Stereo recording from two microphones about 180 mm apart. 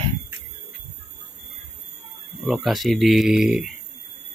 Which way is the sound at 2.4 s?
Centre (ahead or behind).